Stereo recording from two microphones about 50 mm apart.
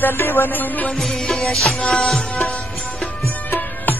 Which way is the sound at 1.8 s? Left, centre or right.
Left.